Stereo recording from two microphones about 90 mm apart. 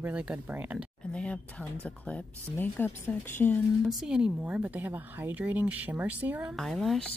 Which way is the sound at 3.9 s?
5° right (ahead or behind).